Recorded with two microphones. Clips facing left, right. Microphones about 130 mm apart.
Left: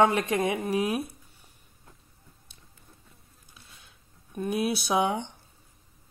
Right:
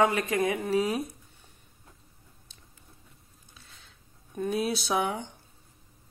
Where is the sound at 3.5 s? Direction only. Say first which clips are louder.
Left 1 dB; 15° left (ahead or behind).